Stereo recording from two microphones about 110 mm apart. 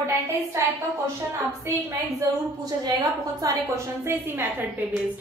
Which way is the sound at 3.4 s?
25° right (ahead or behind).